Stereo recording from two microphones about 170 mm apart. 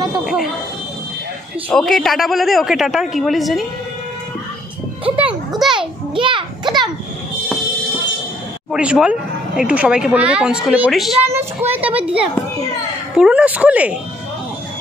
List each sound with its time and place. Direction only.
0.2 s speech: centre (ahead or behind)
1.7 s a woman's voice: 5° left (ahead or behind)
5.1 s music: 5° right (ahead or behind)
5.7 s a sound: 30° right (ahead or behind)
8.7 s a woman's voice: 5° right (ahead or behind)